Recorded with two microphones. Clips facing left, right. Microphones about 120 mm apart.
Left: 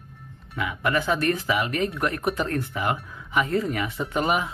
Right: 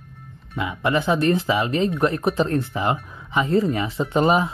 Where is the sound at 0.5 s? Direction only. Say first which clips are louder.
Right 3 dB; 25° right (ahead or behind).